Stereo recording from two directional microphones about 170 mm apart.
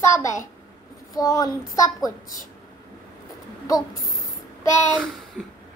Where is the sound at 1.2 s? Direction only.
20° left (ahead or behind).